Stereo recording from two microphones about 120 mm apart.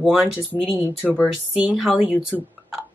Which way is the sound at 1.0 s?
15° left (ahead or behind).